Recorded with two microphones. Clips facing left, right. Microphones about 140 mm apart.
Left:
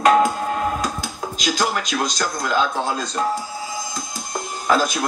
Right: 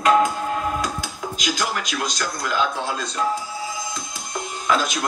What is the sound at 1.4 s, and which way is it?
Speech, 35° left (ahead or behind).